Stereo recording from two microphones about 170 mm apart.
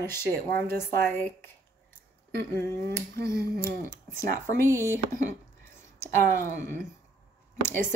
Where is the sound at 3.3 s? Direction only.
65° right (ahead or behind).